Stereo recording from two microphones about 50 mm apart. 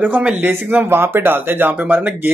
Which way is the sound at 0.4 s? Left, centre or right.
Right.